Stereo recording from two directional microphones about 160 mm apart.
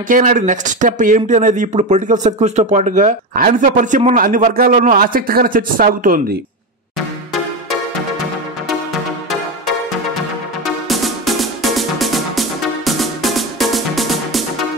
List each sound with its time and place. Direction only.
0.1 s speech: 55° right (ahead or behind)
10.6 s music: centre (ahead or behind)